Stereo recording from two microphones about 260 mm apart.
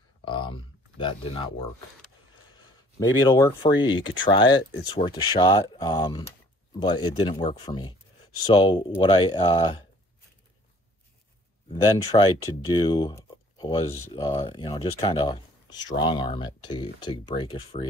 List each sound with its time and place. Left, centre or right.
0.2 s a sound: centre
3.0 s speech: centre
11.7 s speech: centre